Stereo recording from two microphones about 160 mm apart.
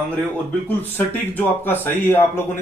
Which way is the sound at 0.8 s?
10° left (ahead or behind).